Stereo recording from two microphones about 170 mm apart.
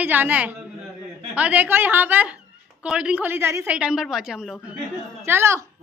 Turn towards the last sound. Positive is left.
turn(degrees=-15)  # may be behind; listen again after turning